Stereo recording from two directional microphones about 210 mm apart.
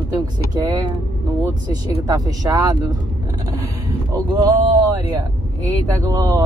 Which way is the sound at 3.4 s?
15° right (ahead or behind).